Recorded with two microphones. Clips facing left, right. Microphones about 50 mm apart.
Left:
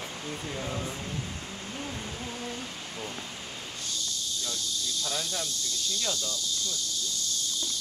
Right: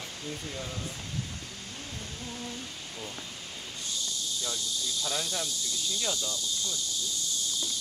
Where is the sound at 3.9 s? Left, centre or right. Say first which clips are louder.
Even; centre.